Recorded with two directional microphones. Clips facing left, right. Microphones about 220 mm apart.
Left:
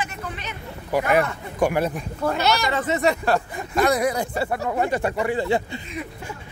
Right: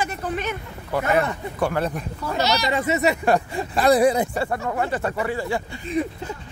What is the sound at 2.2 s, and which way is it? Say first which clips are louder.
Speech: left 6 dB; 55° left (ahead or behind).